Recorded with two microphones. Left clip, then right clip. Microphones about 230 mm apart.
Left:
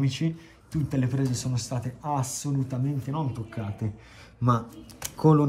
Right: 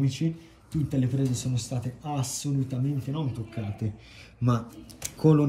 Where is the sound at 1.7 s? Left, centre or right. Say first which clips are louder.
Left 7 dB; centre.